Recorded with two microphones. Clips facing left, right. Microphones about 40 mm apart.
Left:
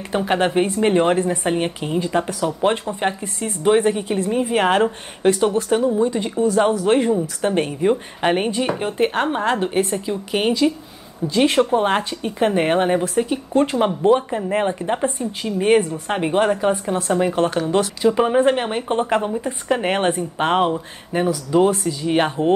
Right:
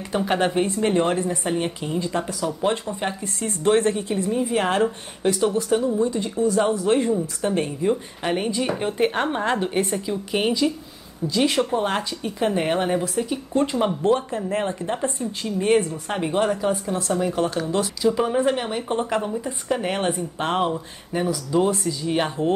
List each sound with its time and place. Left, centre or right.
0.1 s a woman's voice: centre
0.7 s speech: left
8.6 s a woman's voice: centre
11.2 s speech: left